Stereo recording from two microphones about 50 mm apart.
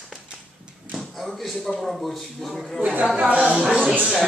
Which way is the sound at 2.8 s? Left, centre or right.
Right.